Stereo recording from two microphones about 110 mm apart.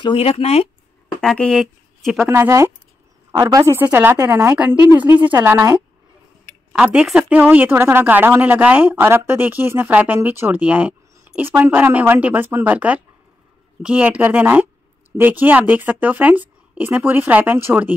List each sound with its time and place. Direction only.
0.0 s speech: 55° left (ahead or behind)
1.0 s a woman's voice: 5° left (ahead or behind)
2.2 s speech: 25° right (ahead or behind)
3.7 s speech: 20° right (ahead or behind)
6.8 s speech: 5° right (ahead or behind)